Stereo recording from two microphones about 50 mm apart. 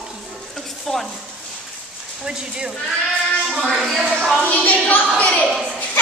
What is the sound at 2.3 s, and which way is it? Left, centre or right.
Speech, centre.